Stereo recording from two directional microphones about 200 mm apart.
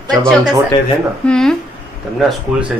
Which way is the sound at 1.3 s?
5° left (ahead or behind).